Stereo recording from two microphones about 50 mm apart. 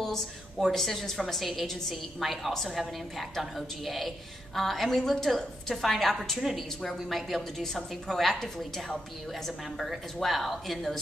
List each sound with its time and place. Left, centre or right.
0.0 s a woman's voice: centre